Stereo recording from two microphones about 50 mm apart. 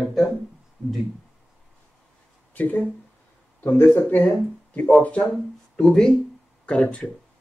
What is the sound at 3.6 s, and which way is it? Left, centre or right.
Speech, left.